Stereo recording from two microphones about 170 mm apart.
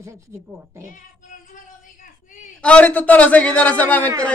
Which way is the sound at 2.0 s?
50° left (ahead or behind).